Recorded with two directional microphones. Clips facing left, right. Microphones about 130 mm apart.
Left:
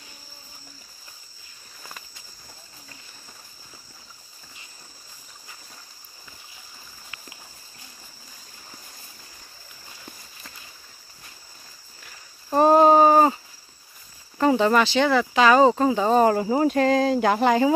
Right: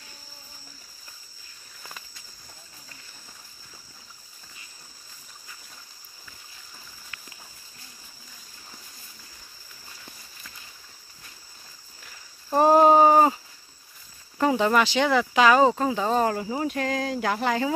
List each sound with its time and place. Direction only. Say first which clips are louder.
12.5 s a sound: left 1 dB; 10° right (ahead or behind)
14.4 s speech: left 2 dB; 5° right (ahead or behind)
15.7 s speech: left 5 dB; 5° left (ahead or behind)
16.4 s speech: left 8 dB; 40° left (ahead or behind); by 17.7 s 20° left (ahead or behind)